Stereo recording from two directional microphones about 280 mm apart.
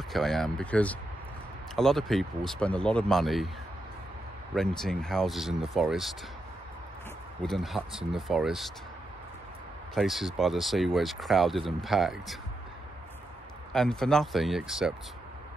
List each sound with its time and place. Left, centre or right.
0.1 s speech: centre
4.6 s speech: centre
7.4 s speech: centre
9.9 s speech: centre
13.7 s speech: centre